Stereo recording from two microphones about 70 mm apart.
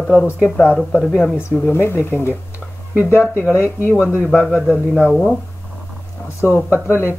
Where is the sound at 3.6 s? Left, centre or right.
Left.